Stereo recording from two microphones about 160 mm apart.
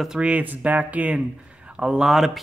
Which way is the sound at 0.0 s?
5° right (ahead or behind).